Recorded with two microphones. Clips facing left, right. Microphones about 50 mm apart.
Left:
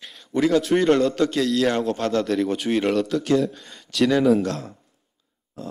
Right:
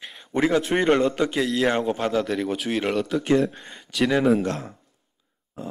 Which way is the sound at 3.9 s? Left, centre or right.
Centre.